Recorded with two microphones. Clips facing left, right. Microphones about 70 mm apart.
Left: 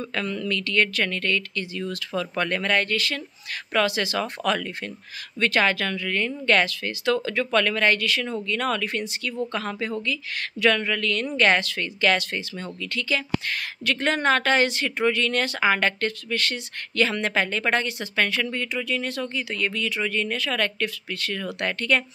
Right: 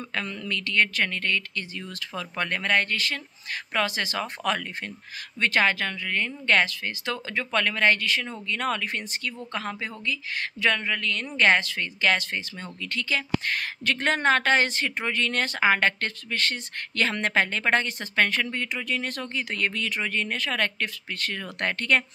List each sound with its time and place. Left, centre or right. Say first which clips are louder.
0.1 s speech: left 3 dB; right